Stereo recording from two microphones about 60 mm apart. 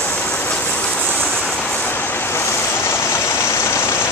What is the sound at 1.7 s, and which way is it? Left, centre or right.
Vehicle, left.